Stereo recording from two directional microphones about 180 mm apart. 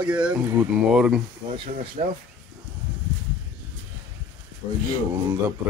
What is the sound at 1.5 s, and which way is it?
Speech, 30° right (ahead or behind).